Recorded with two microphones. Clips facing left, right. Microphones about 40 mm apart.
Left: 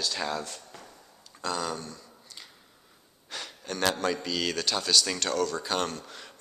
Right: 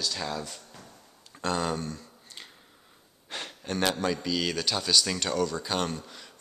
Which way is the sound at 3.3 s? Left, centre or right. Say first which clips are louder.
Right 2 dB; right.